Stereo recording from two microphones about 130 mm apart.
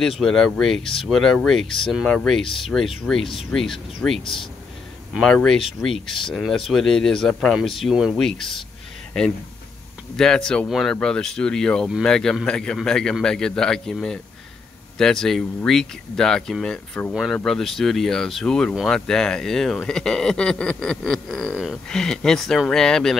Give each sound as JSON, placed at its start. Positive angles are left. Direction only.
{"t": 0.2, "sound": "speech", "side_deg": 5}
{"t": 4.2, "sound": "speech", "side_deg": 40}
{"t": 5.1, "sound": "speech", "side_deg": 5}
{"t": 10.1, "sound": "speech", "side_deg": 5}